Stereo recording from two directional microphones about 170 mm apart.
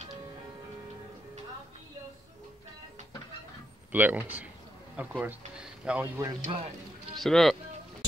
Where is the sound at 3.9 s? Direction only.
10° right (ahead or behind).